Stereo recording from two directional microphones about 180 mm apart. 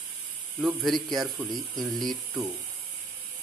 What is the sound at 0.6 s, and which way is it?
A man's voice, centre (ahead or behind).